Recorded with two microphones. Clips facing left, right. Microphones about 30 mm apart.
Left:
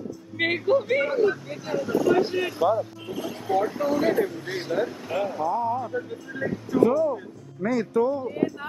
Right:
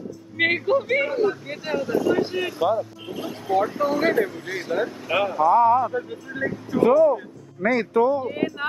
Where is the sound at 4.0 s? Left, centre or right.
Right.